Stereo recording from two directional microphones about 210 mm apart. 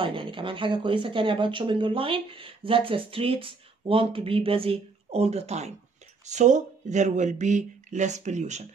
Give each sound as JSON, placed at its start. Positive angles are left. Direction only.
{"t": 0.0, "sound": "speech", "side_deg": -25}